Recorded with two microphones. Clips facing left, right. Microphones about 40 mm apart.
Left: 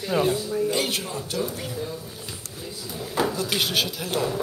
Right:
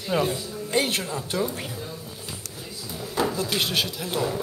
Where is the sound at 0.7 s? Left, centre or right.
Right.